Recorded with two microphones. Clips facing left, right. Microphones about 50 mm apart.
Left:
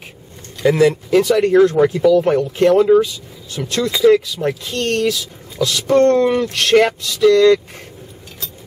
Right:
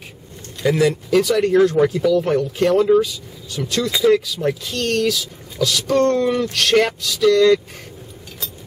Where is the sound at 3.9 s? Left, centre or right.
Centre.